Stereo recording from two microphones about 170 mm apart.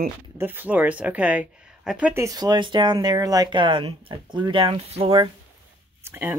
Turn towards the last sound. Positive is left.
turn(degrees=-10)  # may be behind; listen again after turning